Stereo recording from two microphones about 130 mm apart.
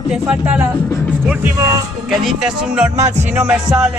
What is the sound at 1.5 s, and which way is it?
Speech, 25° right (ahead or behind).